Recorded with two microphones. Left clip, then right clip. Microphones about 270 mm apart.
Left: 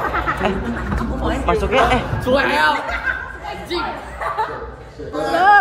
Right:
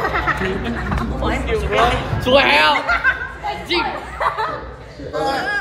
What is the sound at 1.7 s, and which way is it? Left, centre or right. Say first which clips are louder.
Speech: even; centre.